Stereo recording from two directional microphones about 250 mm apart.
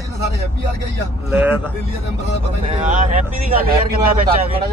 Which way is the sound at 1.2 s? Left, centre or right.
Centre.